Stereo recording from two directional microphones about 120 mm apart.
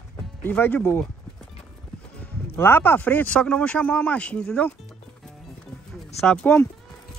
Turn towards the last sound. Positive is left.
turn(degrees=5)  # may be behind; listen again after turning